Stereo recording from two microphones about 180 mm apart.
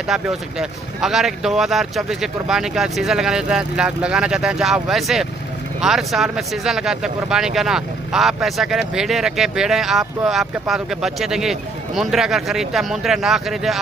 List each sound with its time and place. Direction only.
0.1 s speech: centre (ahead or behind)